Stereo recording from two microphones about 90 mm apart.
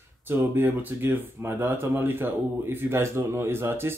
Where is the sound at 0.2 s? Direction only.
25° right (ahead or behind).